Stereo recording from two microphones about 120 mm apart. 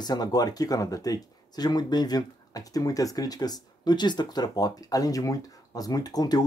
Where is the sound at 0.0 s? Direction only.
35° left (ahead or behind).